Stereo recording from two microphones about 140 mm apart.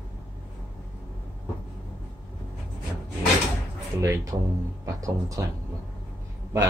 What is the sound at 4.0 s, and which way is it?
Speech, 20° right (ahead or behind).